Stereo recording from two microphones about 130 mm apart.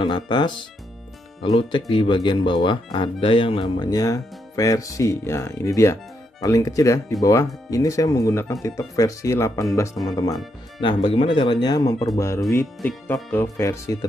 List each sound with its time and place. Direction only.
0.0 s speech: 35° left (ahead or behind)
10.8 s speech: 40° left (ahead or behind)
13.1 s speech: 20° left (ahead or behind)